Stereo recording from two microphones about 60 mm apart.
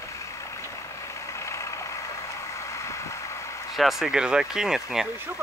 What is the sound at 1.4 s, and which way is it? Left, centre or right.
Vehicle, left.